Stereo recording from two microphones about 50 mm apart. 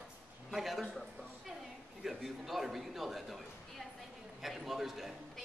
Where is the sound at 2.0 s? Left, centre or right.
Centre.